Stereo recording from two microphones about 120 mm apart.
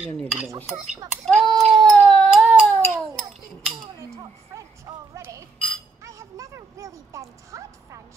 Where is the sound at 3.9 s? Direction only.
25° right (ahead or behind).